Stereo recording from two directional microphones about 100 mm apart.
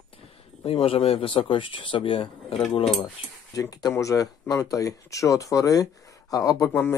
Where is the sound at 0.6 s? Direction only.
70° left (ahead or behind).